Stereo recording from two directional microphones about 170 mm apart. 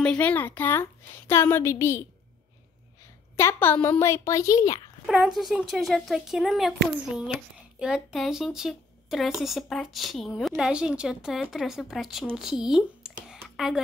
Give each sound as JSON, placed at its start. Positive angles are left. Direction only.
{"t": 0.0, "sound": "a woman's voice", "side_deg": 5}
{"t": 3.3, "sound": "a woman's voice", "side_deg": 15}
{"t": 5.0, "sound": "speech", "side_deg": 0}